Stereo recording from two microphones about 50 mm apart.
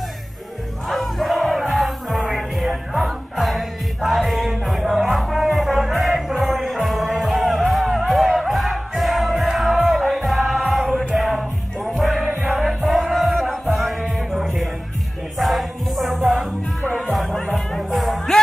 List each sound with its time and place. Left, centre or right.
0.8 s music: centre
16.8 s music: left
17.1 s music: centre